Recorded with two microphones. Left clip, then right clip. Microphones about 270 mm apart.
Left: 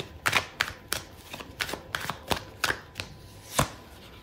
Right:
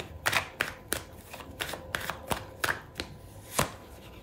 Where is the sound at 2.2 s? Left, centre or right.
Centre.